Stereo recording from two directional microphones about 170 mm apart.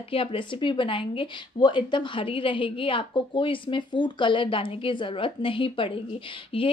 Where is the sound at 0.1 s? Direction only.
35° left (ahead or behind).